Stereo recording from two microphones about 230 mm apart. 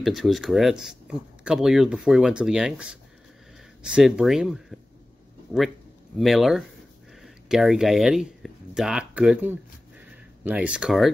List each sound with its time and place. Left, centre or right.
0.0 s speech: centre
6.1 s speech: centre
7.2 s a sound: centre